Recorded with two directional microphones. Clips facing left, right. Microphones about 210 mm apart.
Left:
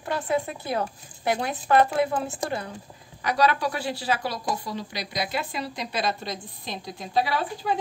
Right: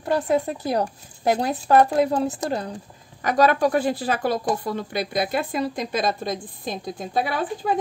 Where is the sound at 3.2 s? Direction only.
45° right (ahead or behind).